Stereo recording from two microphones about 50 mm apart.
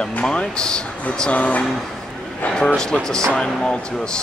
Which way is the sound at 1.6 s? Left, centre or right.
Centre.